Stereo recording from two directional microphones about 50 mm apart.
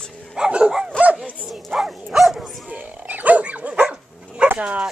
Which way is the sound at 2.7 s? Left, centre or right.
Right.